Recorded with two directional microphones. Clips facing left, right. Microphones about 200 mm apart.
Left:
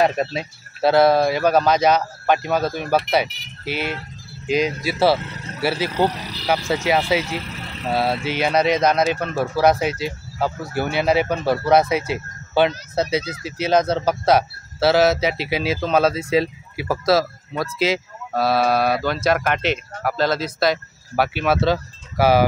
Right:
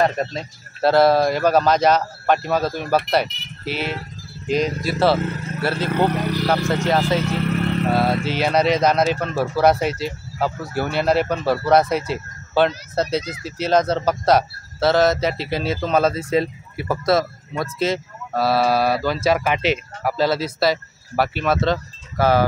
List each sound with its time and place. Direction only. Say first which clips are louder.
0.0 s speech: left 1 dB; 10° left (ahead or behind)
5.9 s speech: right 2 dB; 55° right (ahead or behind)
6.7 s speech: even; 5° left (ahead or behind)
7.2 s vehicle: right 9 dB; 60° right (ahead or behind)
7.9 s speech: left 3 dB; 5° left (ahead or behind)